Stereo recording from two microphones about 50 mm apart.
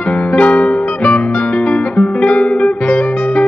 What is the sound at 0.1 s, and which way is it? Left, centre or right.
Music, left.